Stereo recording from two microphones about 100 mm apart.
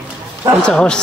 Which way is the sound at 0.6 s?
10° left (ahead or behind).